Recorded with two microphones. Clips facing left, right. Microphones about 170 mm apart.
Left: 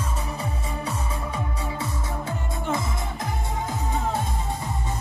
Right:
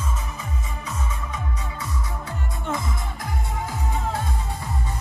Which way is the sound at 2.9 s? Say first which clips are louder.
Left 2 dB; 20° left (ahead or behind).